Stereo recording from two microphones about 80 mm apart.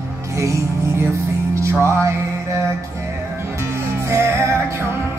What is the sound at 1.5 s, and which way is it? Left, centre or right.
Music, right.